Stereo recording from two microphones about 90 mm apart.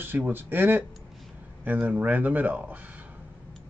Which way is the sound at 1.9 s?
20° right (ahead or behind).